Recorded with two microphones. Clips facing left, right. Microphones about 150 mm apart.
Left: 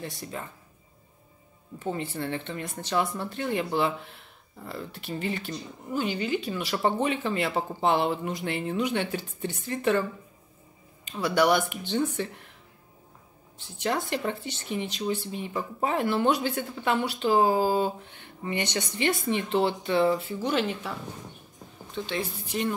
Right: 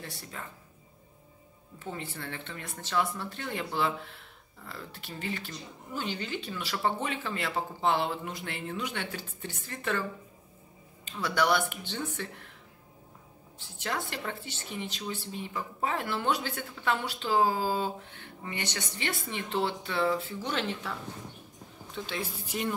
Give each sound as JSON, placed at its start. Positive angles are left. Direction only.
{"t": 0.0, "sound": "speech", "side_deg": 20}
{"t": 1.9, "sound": "speech", "side_deg": 25}
{"t": 11.1, "sound": "speech", "side_deg": 15}
{"t": 14.1, "sound": "speech", "side_deg": 20}
{"t": 20.5, "sound": "speech", "side_deg": 10}
{"t": 21.9, "sound": "a woman's voice", "side_deg": -5}